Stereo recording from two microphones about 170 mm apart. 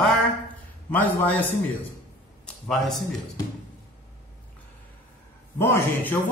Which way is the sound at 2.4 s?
5° left (ahead or behind).